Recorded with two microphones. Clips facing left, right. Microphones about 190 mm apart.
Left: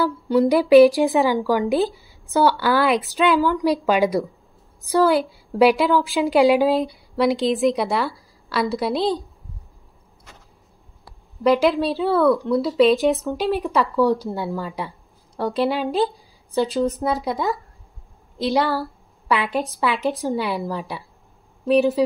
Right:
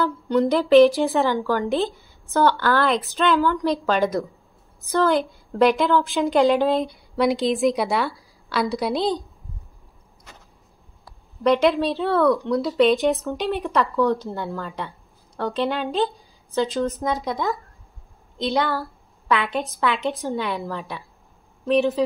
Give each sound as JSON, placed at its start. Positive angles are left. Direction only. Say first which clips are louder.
{"t": 0.0, "sound": "a woman's voice", "louder": "left 2 dB", "side_deg": 10}
{"t": 11.4, "sound": "a woman's voice", "louder": "left 1 dB", "side_deg": 5}
{"t": 16.6, "sound": "a woman's voice", "louder": "left 3 dB", "side_deg": 35}
{"t": 17.0, "sound": "a woman's voice", "louder": "left 2 dB", "side_deg": 5}